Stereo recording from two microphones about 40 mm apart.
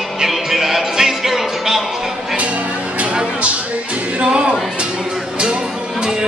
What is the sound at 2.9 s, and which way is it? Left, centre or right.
Music, right.